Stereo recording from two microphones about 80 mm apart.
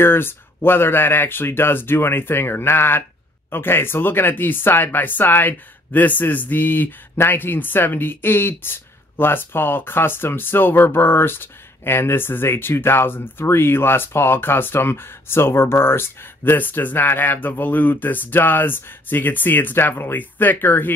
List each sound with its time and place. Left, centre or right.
0.0 s speech: left